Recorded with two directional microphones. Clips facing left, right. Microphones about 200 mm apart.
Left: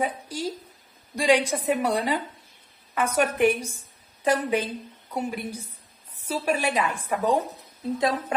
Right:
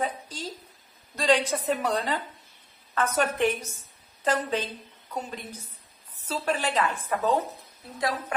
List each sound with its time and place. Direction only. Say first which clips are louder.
0.0 s a sound: left 3 dB; 10° left (ahead or behind)
1.1 s a woman's voice: left 2 dB; 10° left (ahead or behind)
8.0 s a woman's voice: left 3 dB; 20° left (ahead or behind)